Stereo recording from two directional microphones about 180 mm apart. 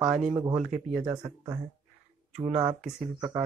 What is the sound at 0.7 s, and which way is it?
Speech, 50° right (ahead or behind).